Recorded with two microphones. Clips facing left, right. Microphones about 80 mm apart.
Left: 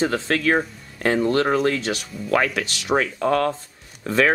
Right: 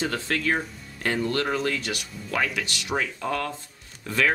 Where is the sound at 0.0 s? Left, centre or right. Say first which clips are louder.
Left 6 dB; left.